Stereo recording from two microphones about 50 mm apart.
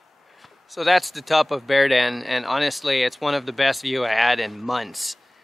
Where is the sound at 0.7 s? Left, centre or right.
Centre.